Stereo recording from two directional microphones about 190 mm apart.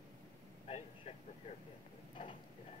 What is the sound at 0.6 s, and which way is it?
Speech, 35° left (ahead or behind).